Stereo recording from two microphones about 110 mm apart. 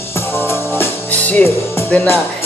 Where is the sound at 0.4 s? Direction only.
20° left (ahead or behind).